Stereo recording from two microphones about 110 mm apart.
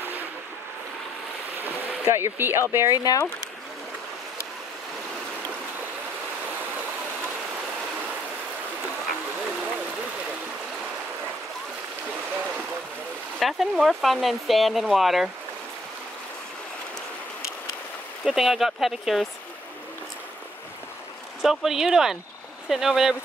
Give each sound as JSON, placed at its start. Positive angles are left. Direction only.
{"t": 2.0, "sound": "speech", "side_deg": -20}
{"t": 3.0, "sound": "speech", "side_deg": 35}
{"t": 13.4, "sound": "speech", "side_deg": 0}
{"t": 18.2, "sound": "speech", "side_deg": 0}
{"t": 21.4, "sound": "speech", "side_deg": -5}